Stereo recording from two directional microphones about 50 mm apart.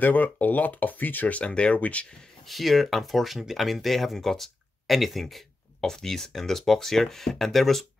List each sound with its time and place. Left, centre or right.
0.0 s speech: left
1.4 s speech: left
2.4 s speech: centre